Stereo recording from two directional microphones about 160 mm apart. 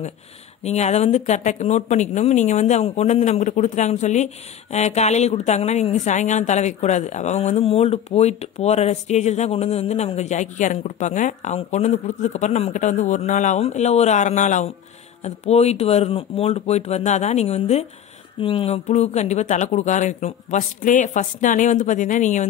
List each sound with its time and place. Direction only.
0.7 s speech: 45° left (ahead or behind)